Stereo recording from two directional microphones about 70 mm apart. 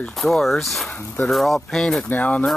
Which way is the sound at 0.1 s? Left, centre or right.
Centre.